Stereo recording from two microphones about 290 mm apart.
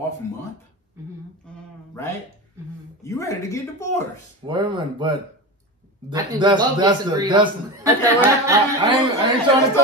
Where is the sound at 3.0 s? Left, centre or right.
Centre.